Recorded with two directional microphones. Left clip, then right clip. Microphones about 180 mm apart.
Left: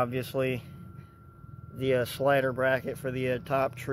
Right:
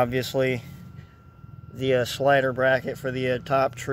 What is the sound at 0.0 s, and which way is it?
Speech, 20° right (ahead or behind).